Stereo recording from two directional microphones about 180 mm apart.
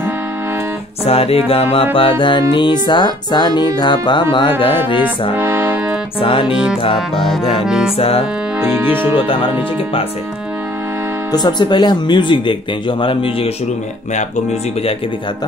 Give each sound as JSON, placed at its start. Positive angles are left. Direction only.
{"t": 1.0, "sound": "music", "side_deg": 35}
{"t": 5.3, "sound": "music", "side_deg": -10}
{"t": 6.2, "sound": "music", "side_deg": 30}
{"t": 6.5, "sound": "music", "side_deg": -5}
{"t": 6.8, "sound": "music", "side_deg": 30}
{"t": 7.2, "sound": "music", "side_deg": 0}
{"t": 8.0, "sound": "music", "side_deg": 30}
{"t": 8.5, "sound": "music", "side_deg": -5}
{"t": 11.3, "sound": "music", "side_deg": 25}